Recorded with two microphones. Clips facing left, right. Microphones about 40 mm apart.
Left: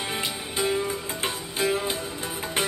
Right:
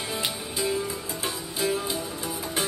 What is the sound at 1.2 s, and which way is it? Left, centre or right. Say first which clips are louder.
Music: left 2 dB; left.